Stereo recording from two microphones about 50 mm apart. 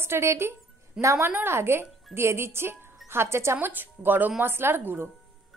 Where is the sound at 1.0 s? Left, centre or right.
Right.